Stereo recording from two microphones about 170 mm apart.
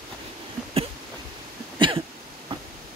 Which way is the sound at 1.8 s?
30° right (ahead or behind).